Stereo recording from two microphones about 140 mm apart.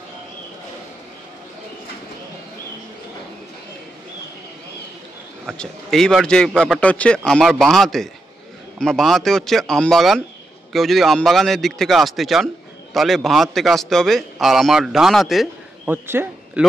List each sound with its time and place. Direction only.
5.5 s a man's voice: 5° left (ahead or behind)
15.9 s speech: 15° right (ahead or behind)